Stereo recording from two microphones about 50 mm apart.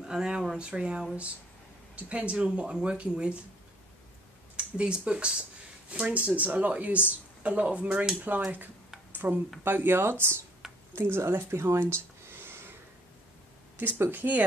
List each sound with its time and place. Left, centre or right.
0.0 s speech: centre
4.6 s speech: centre
8.3 s speech: right
9.1 s a sound: right
9.7 s speech: right
10.6 s a sound: centre
11.0 s speech: right
13.7 s speech: right